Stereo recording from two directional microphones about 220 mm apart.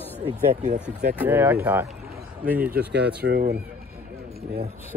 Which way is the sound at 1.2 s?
10° right (ahead or behind).